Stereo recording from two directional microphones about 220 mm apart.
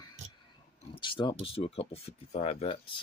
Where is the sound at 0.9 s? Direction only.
20° left (ahead or behind).